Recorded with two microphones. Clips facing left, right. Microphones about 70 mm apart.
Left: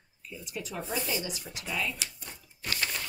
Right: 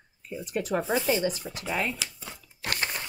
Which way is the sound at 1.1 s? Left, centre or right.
Right.